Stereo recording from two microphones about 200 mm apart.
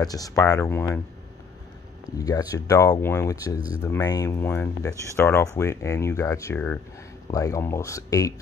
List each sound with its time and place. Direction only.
0.0 s speech: 20° left (ahead or behind)
2.0 s speech: 15° left (ahead or behind)